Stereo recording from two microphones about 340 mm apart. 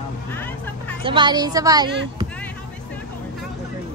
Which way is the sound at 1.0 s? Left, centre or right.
Centre.